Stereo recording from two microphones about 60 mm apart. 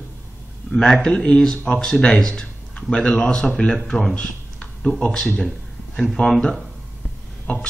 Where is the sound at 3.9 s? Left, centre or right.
Centre.